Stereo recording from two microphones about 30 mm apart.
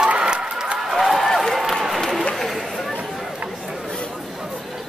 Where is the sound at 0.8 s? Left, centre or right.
Centre.